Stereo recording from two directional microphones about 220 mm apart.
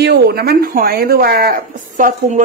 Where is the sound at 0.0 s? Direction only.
45° right (ahead or behind).